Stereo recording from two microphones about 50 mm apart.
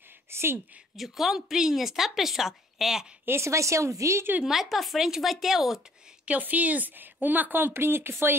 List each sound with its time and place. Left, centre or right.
0.3 s speech: right
0.9 s speech: centre
3.3 s speech: right
4.5 s speech: centre
6.2 s speech: right